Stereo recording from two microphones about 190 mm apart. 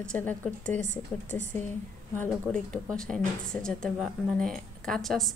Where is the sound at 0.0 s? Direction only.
5° left (ahead or behind).